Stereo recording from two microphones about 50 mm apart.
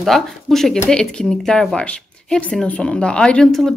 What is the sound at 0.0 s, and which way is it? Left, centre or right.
A woman's voice, centre.